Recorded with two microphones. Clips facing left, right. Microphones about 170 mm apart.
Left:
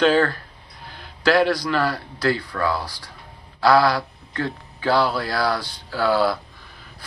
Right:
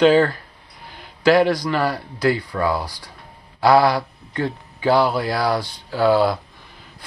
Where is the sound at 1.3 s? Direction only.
15° right (ahead or behind).